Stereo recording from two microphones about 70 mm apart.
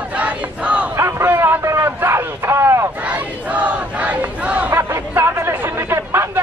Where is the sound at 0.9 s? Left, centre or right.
Right.